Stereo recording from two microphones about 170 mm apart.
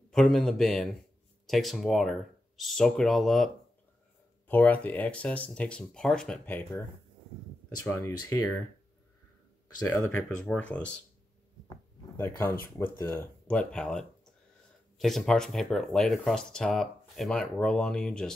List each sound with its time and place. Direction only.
0.1 s speech: centre (ahead or behind)
7.8 s speech: 15° left (ahead or behind)
9.8 s speech: 20° left (ahead or behind)
10.2 s speech: 5° left (ahead or behind)
11.7 s a sound: 15° left (ahead or behind)
12.7 s speech: 10° left (ahead or behind)